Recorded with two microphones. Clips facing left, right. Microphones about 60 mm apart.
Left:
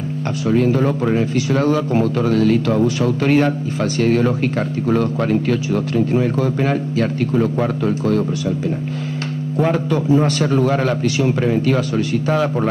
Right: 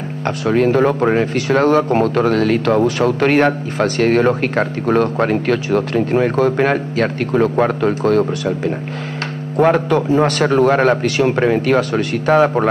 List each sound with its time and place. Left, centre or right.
0.5 s speech: right